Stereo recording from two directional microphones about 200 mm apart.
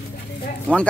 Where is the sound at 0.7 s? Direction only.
5° left (ahead or behind).